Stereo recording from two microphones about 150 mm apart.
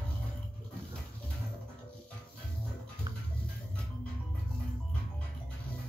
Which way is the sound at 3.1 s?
25° right (ahead or behind).